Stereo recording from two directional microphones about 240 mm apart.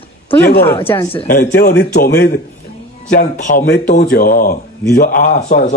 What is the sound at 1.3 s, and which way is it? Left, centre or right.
Speech, left.